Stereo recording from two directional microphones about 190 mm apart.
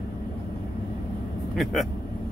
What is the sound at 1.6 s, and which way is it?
Speech, centre (ahead or behind).